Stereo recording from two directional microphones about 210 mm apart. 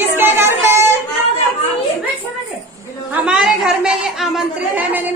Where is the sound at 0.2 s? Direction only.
10° right (ahead or behind).